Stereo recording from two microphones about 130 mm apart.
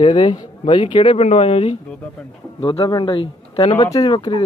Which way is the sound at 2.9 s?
35° left (ahead or behind).